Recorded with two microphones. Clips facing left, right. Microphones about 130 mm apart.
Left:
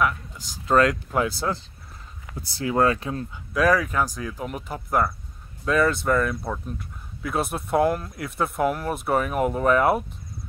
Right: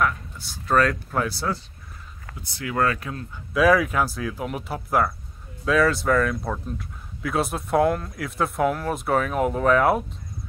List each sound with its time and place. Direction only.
0.7 s speech: 20° left (ahead or behind)
2.3 s speech: 35° left (ahead or behind)
3.5 s speech: 5° right (ahead or behind)